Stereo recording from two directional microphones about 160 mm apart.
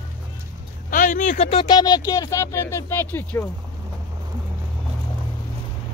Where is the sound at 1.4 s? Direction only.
30° left (ahead or behind); by 3.5 s 10° left (ahead or behind).